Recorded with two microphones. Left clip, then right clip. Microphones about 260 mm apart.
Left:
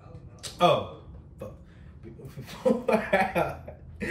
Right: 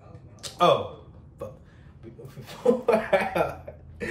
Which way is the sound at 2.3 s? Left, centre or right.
Centre.